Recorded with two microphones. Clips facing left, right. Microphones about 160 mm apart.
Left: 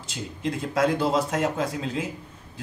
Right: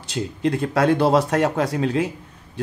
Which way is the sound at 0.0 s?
70° right (ahead or behind).